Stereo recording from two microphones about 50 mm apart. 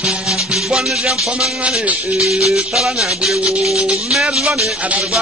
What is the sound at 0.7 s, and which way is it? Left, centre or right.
Music, centre.